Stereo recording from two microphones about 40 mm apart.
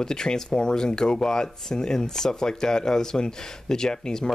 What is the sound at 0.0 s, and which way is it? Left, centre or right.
Speech, centre.